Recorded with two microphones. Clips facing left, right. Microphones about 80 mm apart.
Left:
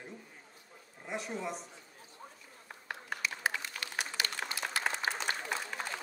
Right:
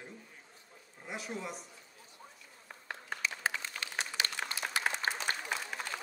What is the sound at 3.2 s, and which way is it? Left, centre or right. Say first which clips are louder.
Applause: even; right.